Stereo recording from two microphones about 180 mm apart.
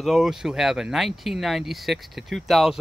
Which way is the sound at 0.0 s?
Centre (ahead or behind).